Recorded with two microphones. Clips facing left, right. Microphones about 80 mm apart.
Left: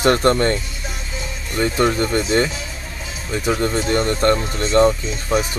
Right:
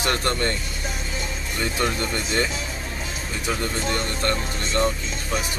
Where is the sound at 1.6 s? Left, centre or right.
Left.